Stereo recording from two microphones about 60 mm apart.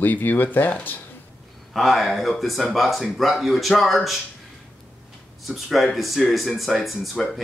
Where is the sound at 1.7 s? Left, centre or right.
Centre.